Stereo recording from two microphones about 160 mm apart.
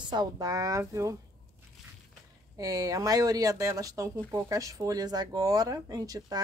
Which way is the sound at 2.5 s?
20° right (ahead or behind).